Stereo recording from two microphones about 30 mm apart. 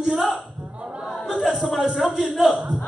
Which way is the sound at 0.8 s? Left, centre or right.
Right.